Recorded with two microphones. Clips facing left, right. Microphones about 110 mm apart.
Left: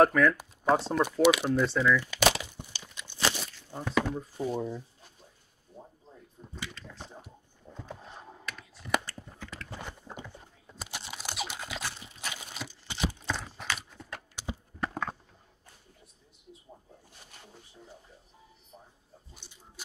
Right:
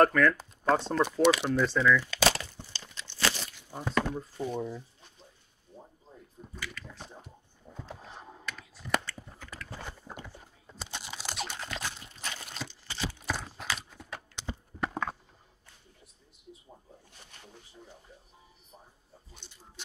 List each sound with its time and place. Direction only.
0.0 s speech: 5° left (ahead or behind)
2.0 s crumpling: 15° left (ahead or behind)
4.0 s speech: centre (ahead or behind)
6.4 s a sound: 5° left (ahead or behind)
10.2 s computer keyboard: 5° right (ahead or behind)
12.8 s a sound: 20° left (ahead or behind)
13.2 s horse: 5° right (ahead or behind)
14.3 s clip-clop: 10° left (ahead or behind)
14.9 s a sound: 5° right (ahead or behind)